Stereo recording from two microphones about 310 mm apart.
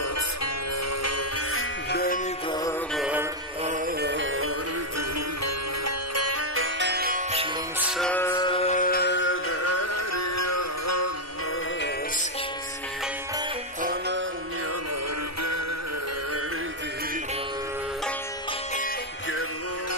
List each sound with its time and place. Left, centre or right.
1.9 s music: left
3.0 s music: centre
3.6 s music: right
5.4 s music: right
8.0 s music: centre; by 11.1 s left
13.8 s music: right